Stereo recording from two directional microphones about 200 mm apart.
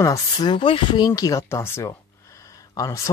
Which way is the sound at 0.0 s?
20° left (ahead or behind).